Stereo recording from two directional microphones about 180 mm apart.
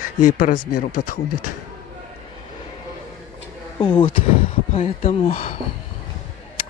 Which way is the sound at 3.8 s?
25° left (ahead or behind).